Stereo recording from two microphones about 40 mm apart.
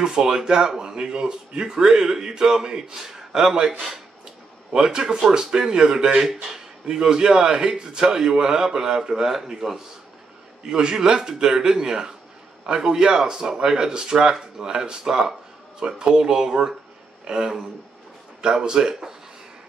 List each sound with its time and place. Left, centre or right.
0.0 s speech: centre
4.7 s speech: centre